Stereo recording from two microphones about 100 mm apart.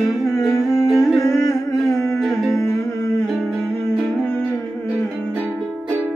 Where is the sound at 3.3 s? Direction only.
5° right (ahead or behind).